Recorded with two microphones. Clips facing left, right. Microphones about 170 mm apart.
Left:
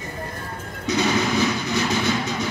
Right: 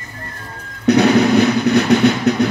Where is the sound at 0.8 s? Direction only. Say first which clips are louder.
Right 10 dB; 65° right (ahead or behind).